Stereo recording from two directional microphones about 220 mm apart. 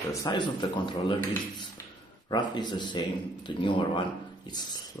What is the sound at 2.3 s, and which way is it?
A man's voice, 20° left (ahead or behind).